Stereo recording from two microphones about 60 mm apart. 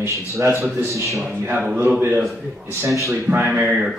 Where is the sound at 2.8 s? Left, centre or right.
Right.